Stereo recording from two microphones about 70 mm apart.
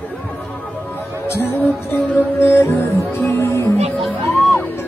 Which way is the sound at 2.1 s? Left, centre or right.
Left.